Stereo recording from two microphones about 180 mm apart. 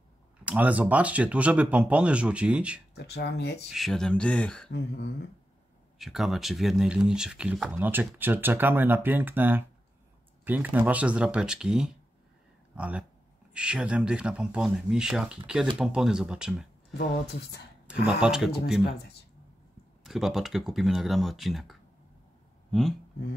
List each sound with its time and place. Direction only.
0.5 s speech: 10° right (ahead or behind)
3.0 s speech: 65° left (ahead or behind)
3.7 s speech: centre (ahead or behind)
4.6 s speech: 65° left (ahead or behind)
5.9 s speech: centre (ahead or behind)
16.9 s speech: 65° left (ahead or behind)
17.8 s speech: 5° right (ahead or behind)
20.0 s speech: centre (ahead or behind)